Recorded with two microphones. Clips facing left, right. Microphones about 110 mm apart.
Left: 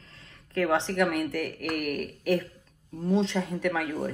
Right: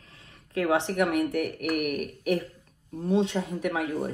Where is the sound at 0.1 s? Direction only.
20° right (ahead or behind).